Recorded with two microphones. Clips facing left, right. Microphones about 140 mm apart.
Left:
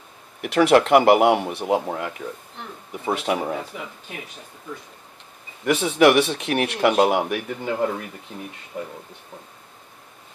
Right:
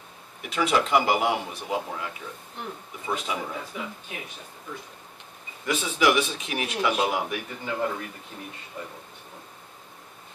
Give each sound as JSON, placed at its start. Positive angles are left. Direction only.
{"t": 0.4, "sound": "speech", "side_deg": 65}
{"t": 5.7, "sound": "speech", "side_deg": 70}
{"t": 8.7, "sound": "speech", "side_deg": 50}